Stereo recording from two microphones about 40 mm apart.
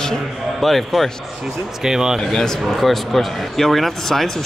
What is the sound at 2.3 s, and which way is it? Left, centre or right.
Speech, centre.